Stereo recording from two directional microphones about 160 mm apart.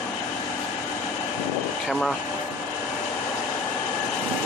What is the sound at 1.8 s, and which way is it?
Speech, centre (ahead or behind).